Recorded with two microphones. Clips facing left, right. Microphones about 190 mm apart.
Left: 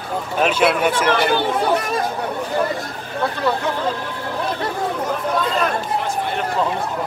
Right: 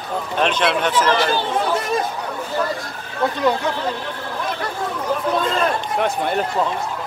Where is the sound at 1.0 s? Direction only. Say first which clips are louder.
Left 1 dB; 60° left (ahead or behind).